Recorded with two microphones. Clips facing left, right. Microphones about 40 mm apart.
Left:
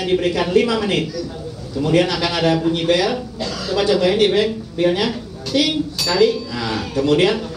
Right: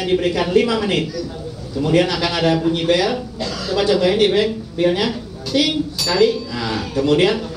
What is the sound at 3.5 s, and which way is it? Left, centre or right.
Speech, centre.